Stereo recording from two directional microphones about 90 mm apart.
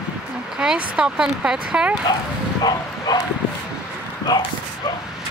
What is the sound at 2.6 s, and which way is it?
Bow-wow, 50° left (ahead or behind).